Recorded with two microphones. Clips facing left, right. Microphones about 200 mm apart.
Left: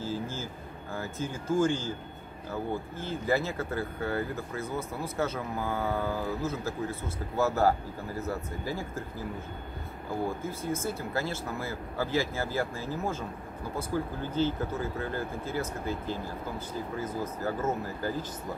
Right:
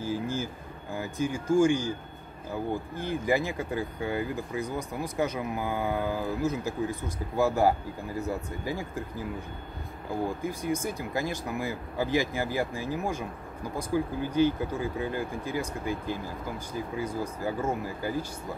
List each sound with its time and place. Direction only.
0.0 s a sound: 15° right (ahead or behind)
0.9 s speech: 15° right (ahead or behind)
10.2 s speech: 15° right (ahead or behind)